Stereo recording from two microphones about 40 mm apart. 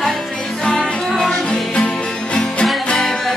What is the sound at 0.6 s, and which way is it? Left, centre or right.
Music, left.